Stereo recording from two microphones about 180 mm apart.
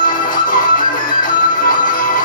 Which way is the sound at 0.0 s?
50° left (ahead or behind).